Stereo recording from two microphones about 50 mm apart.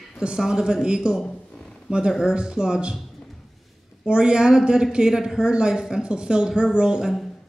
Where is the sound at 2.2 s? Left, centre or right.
Centre.